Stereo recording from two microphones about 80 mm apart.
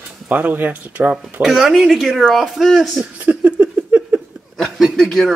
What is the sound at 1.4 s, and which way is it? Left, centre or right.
Speech, centre.